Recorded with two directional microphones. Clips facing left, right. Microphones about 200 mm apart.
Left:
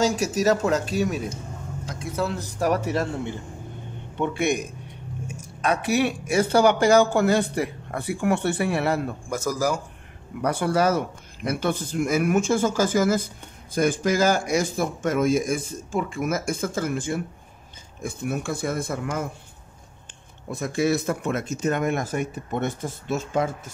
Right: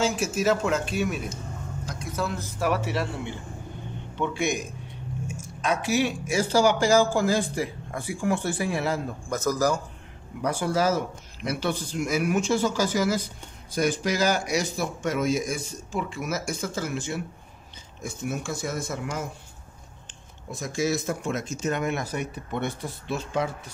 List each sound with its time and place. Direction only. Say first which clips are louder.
0.0 s speech: left 3 dB; 40° left (ahead or behind)
2.6 s a man's voice: left 3 dB; 40° left (ahead or behind)
4.2 s speech: left 3 dB; 60° left (ahead or behind)
9.3 s a man's voice: right 1 dB; 10° left (ahead or behind)
10.4 s a man's voice: left 3 dB; 60° left (ahead or behind)
20.5 s a man's voice: left 4 dB; 60° left (ahead or behind)